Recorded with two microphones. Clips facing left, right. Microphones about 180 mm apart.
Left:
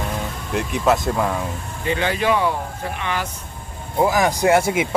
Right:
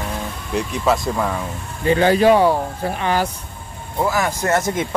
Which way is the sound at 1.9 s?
35° right (ahead or behind).